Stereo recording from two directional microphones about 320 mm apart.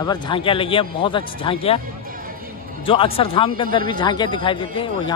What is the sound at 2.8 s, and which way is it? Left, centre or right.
A man's voice, centre.